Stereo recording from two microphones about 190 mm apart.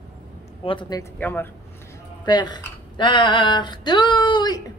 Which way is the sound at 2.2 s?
20° left (ahead or behind).